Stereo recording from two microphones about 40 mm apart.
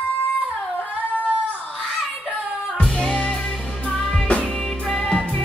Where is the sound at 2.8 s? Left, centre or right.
Left.